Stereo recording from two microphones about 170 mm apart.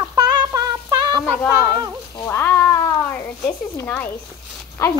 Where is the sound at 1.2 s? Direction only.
5° left (ahead or behind).